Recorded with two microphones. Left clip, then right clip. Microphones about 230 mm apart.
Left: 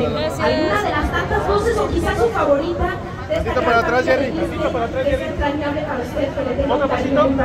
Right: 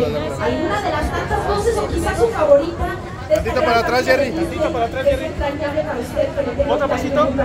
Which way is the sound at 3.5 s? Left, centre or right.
Right.